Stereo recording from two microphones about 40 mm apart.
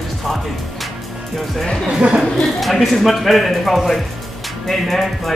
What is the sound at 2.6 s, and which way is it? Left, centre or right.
Speech, centre.